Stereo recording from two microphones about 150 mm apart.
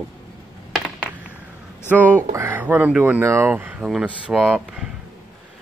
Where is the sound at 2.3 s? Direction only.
15° right (ahead or behind).